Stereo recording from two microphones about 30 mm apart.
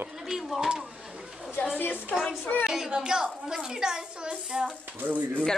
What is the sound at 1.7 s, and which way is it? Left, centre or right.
Speech, left.